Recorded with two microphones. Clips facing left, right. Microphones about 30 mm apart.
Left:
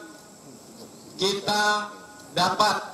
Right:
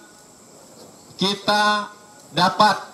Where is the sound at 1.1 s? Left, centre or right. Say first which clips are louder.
Right 4 dB; right.